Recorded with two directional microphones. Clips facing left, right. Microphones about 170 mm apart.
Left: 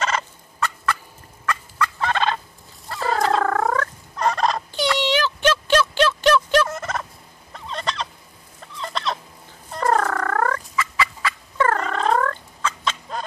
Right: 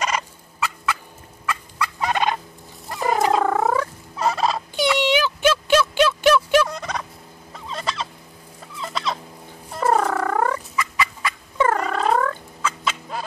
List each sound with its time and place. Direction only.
0.0 s fowl: 10° right (ahead or behind)
6.7 s fowl: 5° left (ahead or behind)